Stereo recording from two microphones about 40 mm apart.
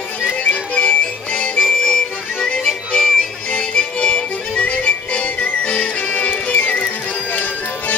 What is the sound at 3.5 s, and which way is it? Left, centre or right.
Music, left.